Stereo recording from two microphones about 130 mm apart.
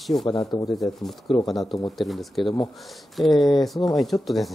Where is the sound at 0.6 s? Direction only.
Centre (ahead or behind).